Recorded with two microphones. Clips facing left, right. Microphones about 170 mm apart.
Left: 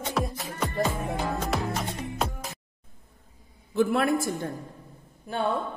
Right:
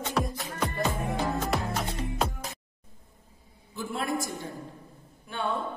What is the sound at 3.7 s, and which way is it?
Speech, 65° left (ahead or behind).